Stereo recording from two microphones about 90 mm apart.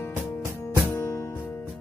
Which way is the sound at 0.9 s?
30° left (ahead or behind).